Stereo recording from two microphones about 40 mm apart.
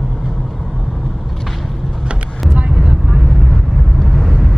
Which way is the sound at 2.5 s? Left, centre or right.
Centre.